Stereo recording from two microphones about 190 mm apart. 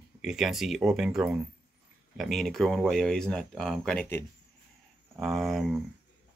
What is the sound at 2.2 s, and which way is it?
Speech, centre (ahead or behind).